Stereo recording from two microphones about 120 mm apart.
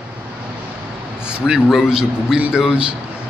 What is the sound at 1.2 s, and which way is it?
A man's voice, 5° right (ahead or behind).